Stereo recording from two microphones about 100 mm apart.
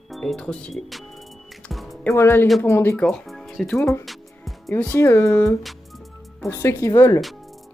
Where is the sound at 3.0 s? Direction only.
5° left (ahead or behind).